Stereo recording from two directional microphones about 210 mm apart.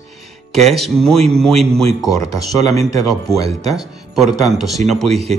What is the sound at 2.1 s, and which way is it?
Speech, 15° left (ahead or behind).